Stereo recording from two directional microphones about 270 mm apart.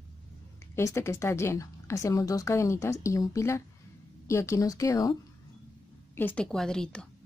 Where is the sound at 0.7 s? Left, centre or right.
Centre.